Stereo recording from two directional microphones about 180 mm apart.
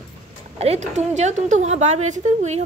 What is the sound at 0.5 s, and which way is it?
A woman's voice, 40° right (ahead or behind).